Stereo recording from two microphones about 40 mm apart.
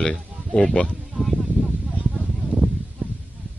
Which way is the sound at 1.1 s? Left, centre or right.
Centre.